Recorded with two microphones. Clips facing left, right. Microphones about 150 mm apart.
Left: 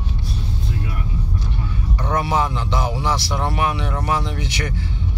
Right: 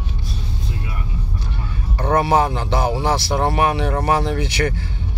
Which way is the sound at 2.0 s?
55° right (ahead or behind).